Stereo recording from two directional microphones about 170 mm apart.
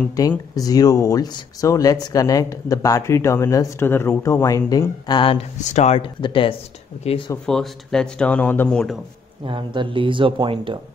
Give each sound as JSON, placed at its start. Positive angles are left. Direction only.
{"t": 0.2, "sound": "speech", "side_deg": 20}
{"t": 5.6, "sound": "speech", "side_deg": 45}
{"t": 7.4, "sound": "speech", "side_deg": 5}
{"t": 9.4, "sound": "speech", "side_deg": -30}